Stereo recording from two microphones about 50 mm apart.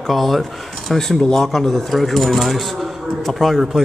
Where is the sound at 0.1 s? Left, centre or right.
Centre.